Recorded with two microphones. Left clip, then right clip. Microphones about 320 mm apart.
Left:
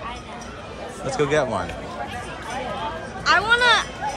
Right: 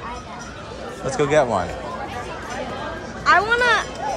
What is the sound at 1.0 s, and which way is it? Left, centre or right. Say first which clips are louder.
Speech: right 3 dB; centre.